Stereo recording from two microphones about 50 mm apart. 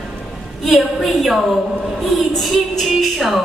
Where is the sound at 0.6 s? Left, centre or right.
Centre.